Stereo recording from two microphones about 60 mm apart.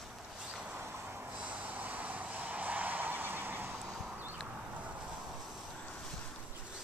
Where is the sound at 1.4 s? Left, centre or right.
Right.